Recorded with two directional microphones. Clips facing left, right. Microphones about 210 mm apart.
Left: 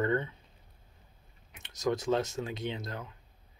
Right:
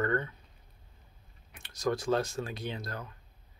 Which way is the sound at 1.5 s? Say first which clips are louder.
Even; 20° left (ahead or behind).